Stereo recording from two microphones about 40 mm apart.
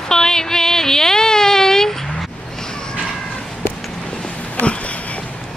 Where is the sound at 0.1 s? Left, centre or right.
Centre.